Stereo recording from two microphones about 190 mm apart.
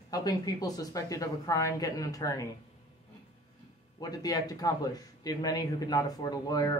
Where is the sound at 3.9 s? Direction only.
20° left (ahead or behind).